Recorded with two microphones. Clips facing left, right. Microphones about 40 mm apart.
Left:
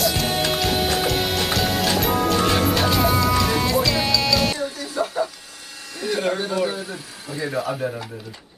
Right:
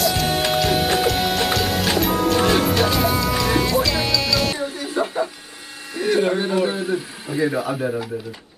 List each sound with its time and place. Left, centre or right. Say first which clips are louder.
0.0 s music: right 2 dB; centre
4.6 s a sound: right 2 dB; right
5.9 s speech: right 4 dB; centre